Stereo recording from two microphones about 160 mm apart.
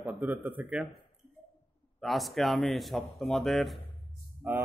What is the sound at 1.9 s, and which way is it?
A man's voice, centre (ahead or behind).